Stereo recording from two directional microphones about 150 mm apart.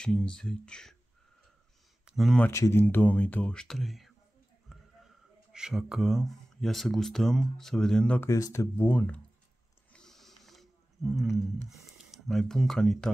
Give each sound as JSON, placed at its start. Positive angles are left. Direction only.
{"t": 0.0, "sound": "speech", "side_deg": 5}
{"t": 2.0, "sound": "speech", "side_deg": 0}
{"t": 2.5, "sound": "speech", "side_deg": 15}
{"t": 8.3, "sound": "speech", "side_deg": 20}
{"t": 9.9, "sound": "a sound", "side_deg": 5}
{"t": 11.7, "sound": "speech", "side_deg": 0}